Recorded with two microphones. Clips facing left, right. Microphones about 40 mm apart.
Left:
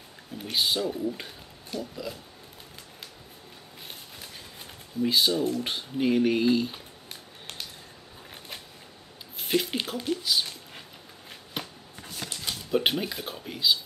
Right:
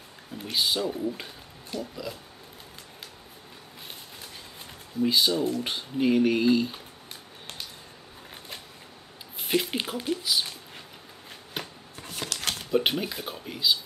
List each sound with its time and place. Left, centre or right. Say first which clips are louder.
0.4 s speech: even; centre
5.0 s speech: even; centre
9.4 s speech: even; centre
12.3 s a sound: right 4 dB; right
12.7 s speech: even; centre